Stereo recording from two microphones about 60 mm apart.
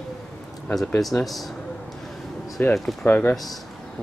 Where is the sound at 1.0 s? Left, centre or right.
Centre.